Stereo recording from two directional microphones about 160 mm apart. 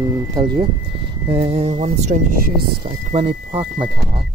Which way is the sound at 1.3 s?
35° right (ahead or behind).